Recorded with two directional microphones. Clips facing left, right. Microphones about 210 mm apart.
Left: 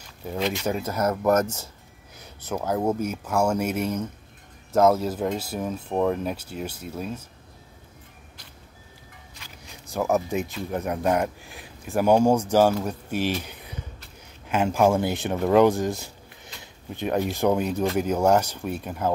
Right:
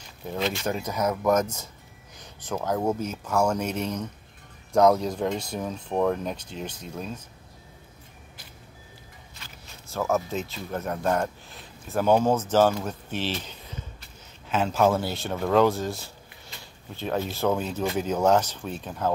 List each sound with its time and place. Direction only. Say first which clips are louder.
0.5 s speech: left 2 dB; 10° left (ahead or behind)
9.4 s speech: left 2 dB; 15° left (ahead or behind)